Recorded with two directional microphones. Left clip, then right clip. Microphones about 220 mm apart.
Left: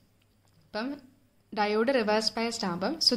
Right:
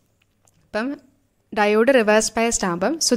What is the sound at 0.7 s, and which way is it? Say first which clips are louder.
A woman's voice: right 9 dB; 35° right (ahead or behind).